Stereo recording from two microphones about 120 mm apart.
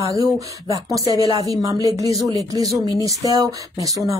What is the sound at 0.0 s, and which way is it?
Speech, 30° right (ahead or behind).